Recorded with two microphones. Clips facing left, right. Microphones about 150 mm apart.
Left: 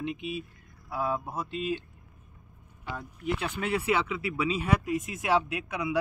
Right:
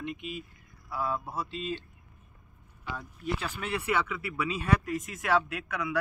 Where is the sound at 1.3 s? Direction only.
50° left (ahead or behind).